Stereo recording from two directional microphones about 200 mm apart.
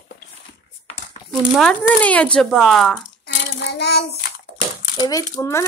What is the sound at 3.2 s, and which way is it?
Child singing, 55° left (ahead or behind).